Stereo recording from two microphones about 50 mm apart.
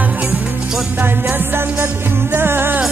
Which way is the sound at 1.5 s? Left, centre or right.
Right.